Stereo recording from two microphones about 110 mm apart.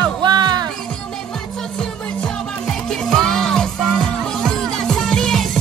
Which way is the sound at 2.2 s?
5° left (ahead or behind).